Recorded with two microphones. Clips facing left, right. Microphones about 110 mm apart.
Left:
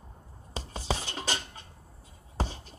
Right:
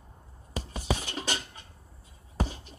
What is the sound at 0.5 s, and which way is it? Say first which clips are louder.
Music: right 1 dB; 30° left (ahead or behind).